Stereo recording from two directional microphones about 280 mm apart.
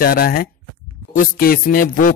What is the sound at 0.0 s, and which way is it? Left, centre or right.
Music, left.